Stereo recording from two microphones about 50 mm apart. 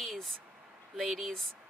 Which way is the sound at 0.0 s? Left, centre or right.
Centre.